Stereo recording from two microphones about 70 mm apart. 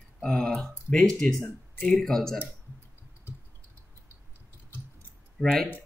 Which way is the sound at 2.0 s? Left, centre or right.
Centre.